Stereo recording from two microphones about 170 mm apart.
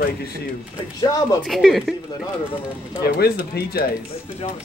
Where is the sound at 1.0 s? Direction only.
25° left (ahead or behind).